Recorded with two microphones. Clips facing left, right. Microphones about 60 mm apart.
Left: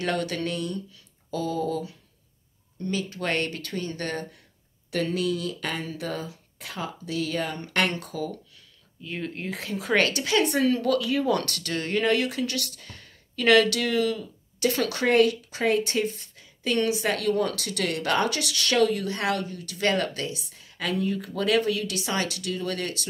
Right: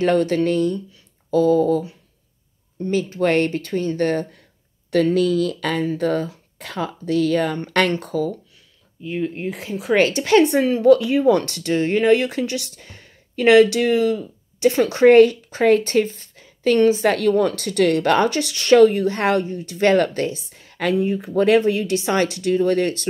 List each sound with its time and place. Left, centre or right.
0.0 s a woman's voice: right
2.9 s a woman's voice: right
5.1 s speech: right
5.9 s speech: right
7.9 s a woman's voice: right
9.1 s speech: centre
9.9 s a woman's voice: right
10.6 s a woman's voice: right